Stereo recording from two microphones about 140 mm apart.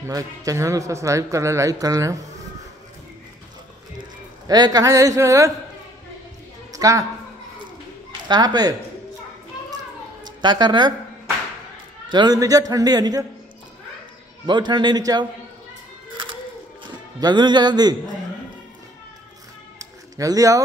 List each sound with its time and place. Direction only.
0.0 s a man's voice: 20° right (ahead or behind)
4.5 s a man's voice: 25° right (ahead or behind)
6.7 s a woman's voice: 25° right (ahead or behind)
8.3 s a man's voice: 30° right (ahead or behind)
10.2 s speech: 30° right (ahead or behind)
12.1 s a man's voice: 30° right (ahead or behind)
14.4 s a man's voice: 35° right (ahead or behind)
17.2 s a man's voice: 30° right (ahead or behind)
19.8 s a sound: 25° right (ahead or behind)